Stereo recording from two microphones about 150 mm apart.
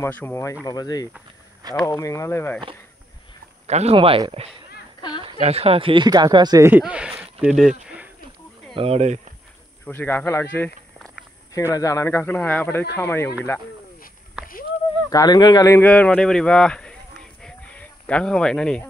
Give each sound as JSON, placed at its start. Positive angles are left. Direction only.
{"t": 0.0, "sound": "speech", "side_deg": 15}
{"t": 3.6, "sound": "speech", "side_deg": -45}
{"t": 5.2, "sound": "speech", "side_deg": -40}
{"t": 6.7, "sound": "speech", "side_deg": -5}
{"t": 8.7, "sound": "speech", "side_deg": -40}
{"t": 9.8, "sound": "speech", "side_deg": 15}
{"t": 14.4, "sound": "a sound", "side_deg": -10}
{"t": 15.0, "sound": "speech", "side_deg": 25}
{"t": 15.9, "sound": "a sound", "side_deg": 10}